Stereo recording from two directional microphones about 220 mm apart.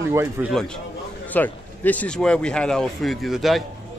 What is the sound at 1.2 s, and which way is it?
Speech, 10° left (ahead or behind).